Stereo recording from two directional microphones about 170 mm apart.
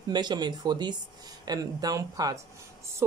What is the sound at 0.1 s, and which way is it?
Speech, 25° right (ahead or behind).